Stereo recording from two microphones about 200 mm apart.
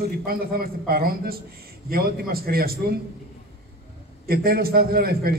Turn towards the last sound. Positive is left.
turn(degrees=-50)  # may be behind; listen again after turning